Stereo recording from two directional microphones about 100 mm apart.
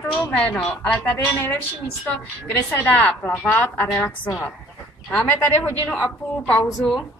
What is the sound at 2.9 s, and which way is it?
A woman's voice, 15° left (ahead or behind).